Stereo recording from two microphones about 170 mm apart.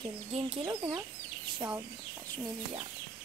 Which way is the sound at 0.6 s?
25° right (ahead or behind).